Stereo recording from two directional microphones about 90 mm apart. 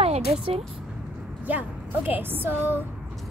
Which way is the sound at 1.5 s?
20° right (ahead or behind).